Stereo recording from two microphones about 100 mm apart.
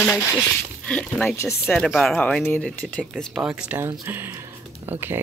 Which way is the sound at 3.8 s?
20° right (ahead or behind).